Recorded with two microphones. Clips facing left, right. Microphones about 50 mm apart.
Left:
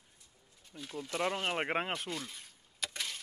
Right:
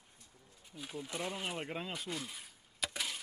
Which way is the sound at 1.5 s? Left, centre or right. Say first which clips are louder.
Left 7 dB; left.